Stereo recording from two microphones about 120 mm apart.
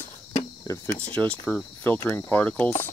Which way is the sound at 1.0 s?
10° left (ahead or behind).